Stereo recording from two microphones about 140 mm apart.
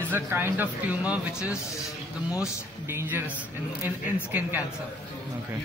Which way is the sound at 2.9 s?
15° right (ahead or behind).